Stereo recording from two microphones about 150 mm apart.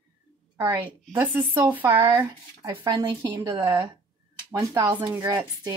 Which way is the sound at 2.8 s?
30° right (ahead or behind).